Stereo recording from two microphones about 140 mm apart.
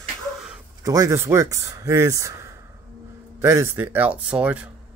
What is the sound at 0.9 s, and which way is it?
Speech, 25° right (ahead or behind).